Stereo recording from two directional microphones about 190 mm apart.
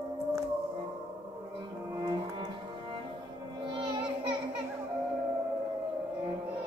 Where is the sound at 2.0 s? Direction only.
25° right (ahead or behind).